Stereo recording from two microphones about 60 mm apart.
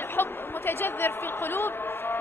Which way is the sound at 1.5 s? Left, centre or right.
Left.